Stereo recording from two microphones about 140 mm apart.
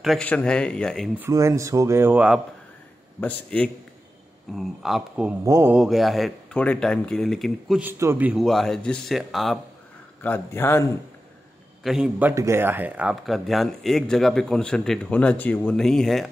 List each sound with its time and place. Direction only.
0.0 s speech: centre (ahead or behind)
1.3 s speech: 20° right (ahead or behind)
3.2 s speech: 10° left (ahead or behind)
4.5 s speech: centre (ahead or behind)
5.4 s speech: 20° right (ahead or behind)
5.8 s speech: centre (ahead or behind)
7.8 s a man's voice: 15° right (ahead or behind)
8.4 s speech: centre (ahead or behind)
10.2 s speech: 15° left (ahead or behind)
11.8 s a man's voice: 5° right (ahead or behind)